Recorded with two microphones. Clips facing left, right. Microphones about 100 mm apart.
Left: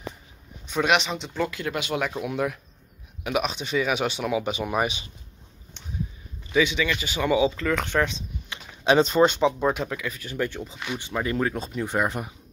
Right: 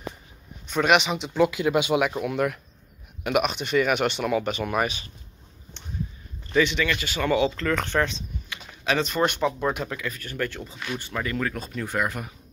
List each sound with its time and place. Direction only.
0.7 s speech: centre (ahead or behind)
2.2 s speech: centre (ahead or behind); by 5.1 s 20° left (ahead or behind)
6.5 s speech: 10° left (ahead or behind)
8.5 s a sound: 25° left (ahead or behind)
9.8 s speech: 10° left (ahead or behind)